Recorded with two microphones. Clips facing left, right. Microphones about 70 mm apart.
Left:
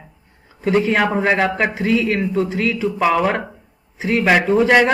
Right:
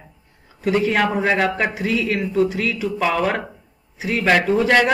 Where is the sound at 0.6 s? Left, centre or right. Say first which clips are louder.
Left 2 dB; left.